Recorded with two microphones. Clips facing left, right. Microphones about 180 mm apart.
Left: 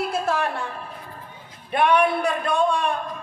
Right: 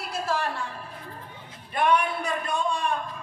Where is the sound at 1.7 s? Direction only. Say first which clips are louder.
Left 5 dB; 65° left (ahead or behind).